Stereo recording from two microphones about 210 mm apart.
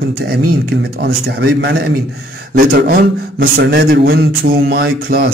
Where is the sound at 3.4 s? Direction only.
50° right (ahead or behind).